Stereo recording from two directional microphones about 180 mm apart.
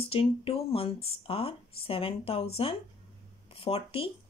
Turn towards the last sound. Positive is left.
turn(degrees=30)  # may be behind; listen again after turning